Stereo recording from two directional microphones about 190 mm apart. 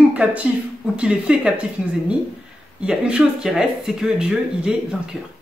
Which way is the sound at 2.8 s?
5° right (ahead or behind).